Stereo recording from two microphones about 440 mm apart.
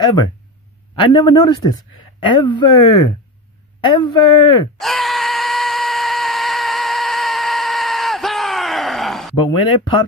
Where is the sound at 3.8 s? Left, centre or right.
Centre.